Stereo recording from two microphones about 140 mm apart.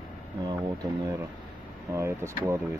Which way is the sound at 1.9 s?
20° right (ahead or behind).